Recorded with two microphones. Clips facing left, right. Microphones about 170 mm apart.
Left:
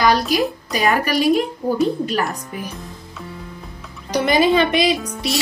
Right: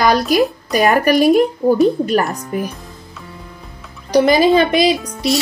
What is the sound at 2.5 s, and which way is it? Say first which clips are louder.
Speech: right 9 dB; 50° right (ahead or behind).